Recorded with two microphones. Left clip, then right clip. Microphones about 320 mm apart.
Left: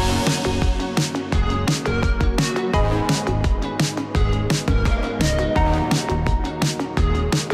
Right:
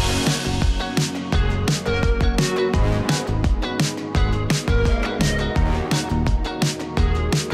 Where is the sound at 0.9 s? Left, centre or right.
Centre.